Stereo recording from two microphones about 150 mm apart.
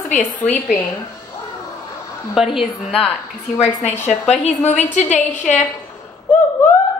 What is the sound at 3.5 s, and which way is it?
Speech, 15° left (ahead or behind).